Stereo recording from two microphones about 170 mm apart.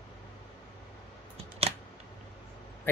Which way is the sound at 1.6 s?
35° right (ahead or behind).